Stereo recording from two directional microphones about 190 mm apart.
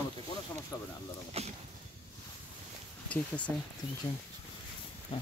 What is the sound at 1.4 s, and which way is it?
Speech, 35° right (ahead or behind).